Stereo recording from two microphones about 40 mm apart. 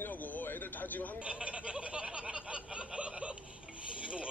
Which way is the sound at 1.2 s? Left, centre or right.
Right.